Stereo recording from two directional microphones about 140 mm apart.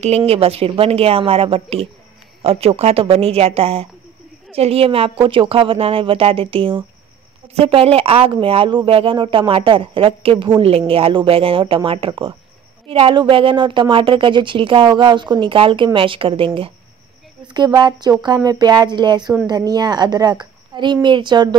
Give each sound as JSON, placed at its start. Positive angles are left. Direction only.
{"t": 0.0, "sound": "a woman's voice", "side_deg": -45}
{"t": 17.6, "sound": "a woman's voice", "side_deg": -30}